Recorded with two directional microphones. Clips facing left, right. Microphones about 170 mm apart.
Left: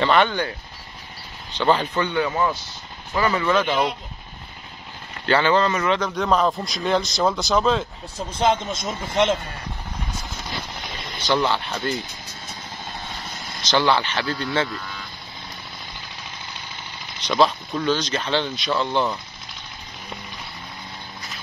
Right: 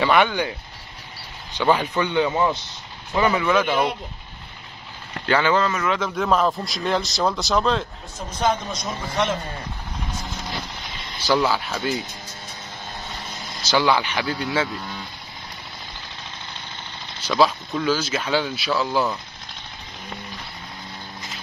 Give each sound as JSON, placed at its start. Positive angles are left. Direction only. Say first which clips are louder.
{"t": 0.0, "sound": "speech", "louder": "even", "side_deg": -10}
{"t": 5.3, "sound": "a man's voice", "louder": "left 1 dB", "side_deg": -10}
{"t": 8.3, "sound": "a man's voice", "louder": "left 2 dB", "side_deg": 25}
{"t": 11.2, "sound": "a man's voice", "louder": "right 1 dB", "side_deg": -5}
{"t": 13.6, "sound": "speech", "louder": "even", "side_deg": -10}
{"t": 17.2, "sound": "speech", "louder": "even", "side_deg": -5}